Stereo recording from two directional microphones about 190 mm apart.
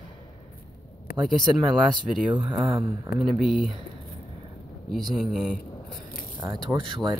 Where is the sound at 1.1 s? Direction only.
55° left (ahead or behind).